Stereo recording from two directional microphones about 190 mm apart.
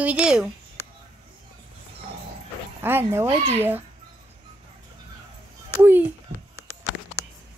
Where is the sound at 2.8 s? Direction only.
10° right (ahead or behind).